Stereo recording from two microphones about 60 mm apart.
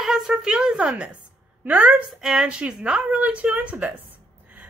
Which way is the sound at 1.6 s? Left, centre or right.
Right.